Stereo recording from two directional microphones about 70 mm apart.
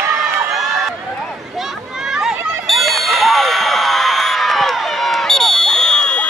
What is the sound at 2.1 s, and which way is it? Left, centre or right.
Clang, centre.